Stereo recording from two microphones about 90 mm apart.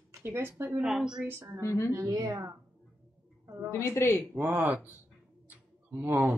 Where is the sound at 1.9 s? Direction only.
35° right (ahead or behind).